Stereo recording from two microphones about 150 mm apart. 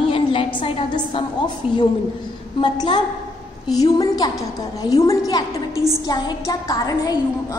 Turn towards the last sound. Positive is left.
turn(degrees=25)  # may be behind; listen again after turning